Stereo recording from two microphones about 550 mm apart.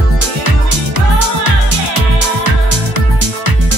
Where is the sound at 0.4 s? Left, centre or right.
Left.